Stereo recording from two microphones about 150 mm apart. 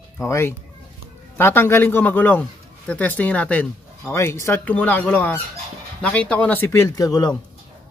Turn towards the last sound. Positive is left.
turn(degrees=25)  # may be behind; listen again after turning